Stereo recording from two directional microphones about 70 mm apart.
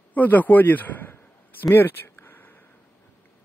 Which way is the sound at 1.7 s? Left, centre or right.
Left.